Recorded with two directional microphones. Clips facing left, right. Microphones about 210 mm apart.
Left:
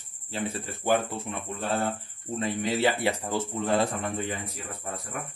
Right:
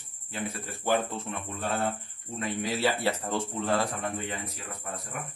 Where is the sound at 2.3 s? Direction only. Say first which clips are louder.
Left 3 dB; 20° left (ahead or behind).